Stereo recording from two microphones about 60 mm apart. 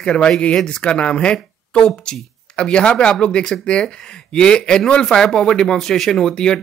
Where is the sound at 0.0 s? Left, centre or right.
Centre.